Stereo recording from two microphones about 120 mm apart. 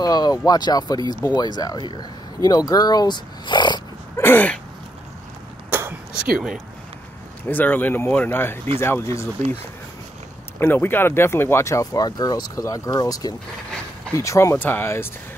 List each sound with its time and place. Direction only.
0.0 s a sound: 30° left (ahead or behind)
0.5 s speech: 35° left (ahead or behind)
4.2 s speech: 15° left (ahead or behind)
5.7 s arrow: 15° right (ahead or behind)
6.2 s speech: 5° right (ahead or behind)
7.4 s speech: 15° left (ahead or behind)
10.6 s speech: 15° left (ahead or behind)